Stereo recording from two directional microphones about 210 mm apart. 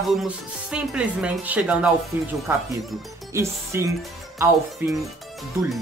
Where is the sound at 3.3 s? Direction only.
15° right (ahead or behind).